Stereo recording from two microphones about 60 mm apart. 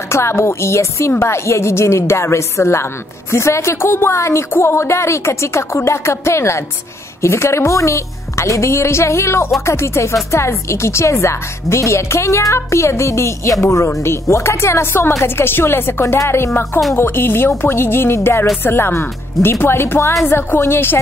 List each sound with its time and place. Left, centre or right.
0.1 s speech: left
14.0 s speech: left